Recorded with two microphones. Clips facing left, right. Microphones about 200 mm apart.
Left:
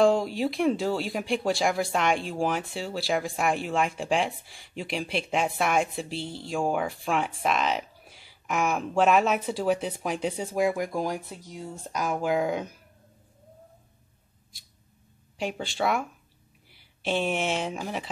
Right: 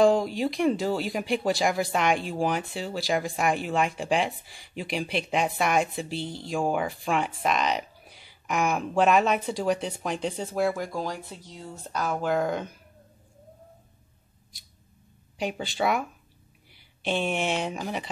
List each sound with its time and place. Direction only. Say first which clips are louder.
0.0 s speech: right 1 dB; centre (ahead or behind)
15.3 s speech: right 1 dB; centre (ahead or behind)